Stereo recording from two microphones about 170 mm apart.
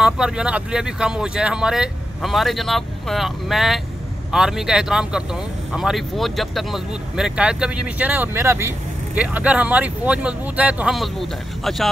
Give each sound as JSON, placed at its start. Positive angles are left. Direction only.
{"t": 0.0, "sound": "speech", "side_deg": -5}